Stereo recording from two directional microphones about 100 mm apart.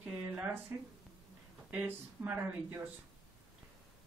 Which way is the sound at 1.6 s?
15° right (ahead or behind).